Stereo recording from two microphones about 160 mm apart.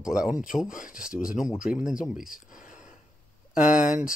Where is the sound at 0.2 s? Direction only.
5° right (ahead or behind).